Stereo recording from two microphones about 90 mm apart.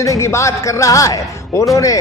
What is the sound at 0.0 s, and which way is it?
A man's voice, 35° left (ahead or behind).